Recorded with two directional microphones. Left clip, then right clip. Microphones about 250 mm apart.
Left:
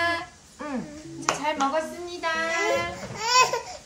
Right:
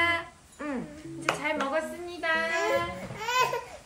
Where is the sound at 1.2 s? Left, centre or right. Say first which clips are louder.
Left 4 dB; centre.